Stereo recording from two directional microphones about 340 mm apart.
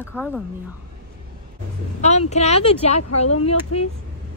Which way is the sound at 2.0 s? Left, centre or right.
Centre.